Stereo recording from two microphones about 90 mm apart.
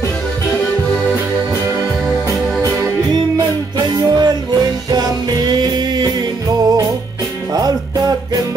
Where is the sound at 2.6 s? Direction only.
35° right (ahead or behind).